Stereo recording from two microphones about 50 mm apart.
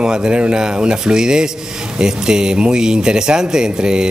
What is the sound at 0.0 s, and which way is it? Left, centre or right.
Speech, right.